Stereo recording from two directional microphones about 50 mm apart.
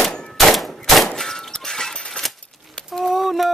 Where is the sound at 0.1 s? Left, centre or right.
Centre.